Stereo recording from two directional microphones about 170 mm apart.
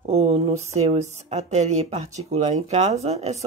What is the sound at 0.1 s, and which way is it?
Speech, 40° right (ahead or behind).